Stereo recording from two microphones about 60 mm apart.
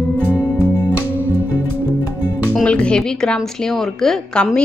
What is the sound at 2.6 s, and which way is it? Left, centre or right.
A woman's voice, centre.